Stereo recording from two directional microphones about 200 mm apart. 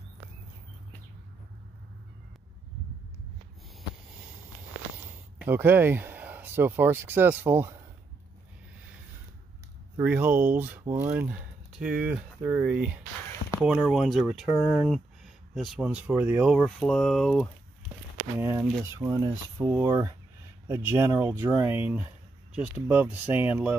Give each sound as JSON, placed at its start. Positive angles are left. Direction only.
{"t": 4.9, "sound": "speech", "side_deg": -10}
{"t": 9.9, "sound": "speech", "side_deg": -10}
{"t": 18.4, "sound": "speech", "side_deg": -15}